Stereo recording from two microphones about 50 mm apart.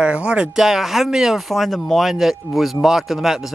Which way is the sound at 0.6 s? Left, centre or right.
Centre.